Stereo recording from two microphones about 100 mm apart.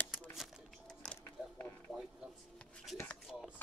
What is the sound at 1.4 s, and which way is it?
Mechanisms, 10° right (ahead or behind).